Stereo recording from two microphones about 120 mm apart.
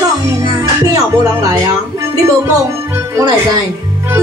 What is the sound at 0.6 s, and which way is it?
Speech, 30° right (ahead or behind).